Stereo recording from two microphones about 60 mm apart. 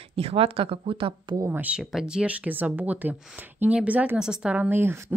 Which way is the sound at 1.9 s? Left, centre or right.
Centre.